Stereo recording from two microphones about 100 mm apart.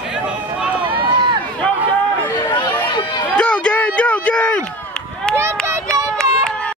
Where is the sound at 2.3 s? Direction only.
45° left (ahead or behind).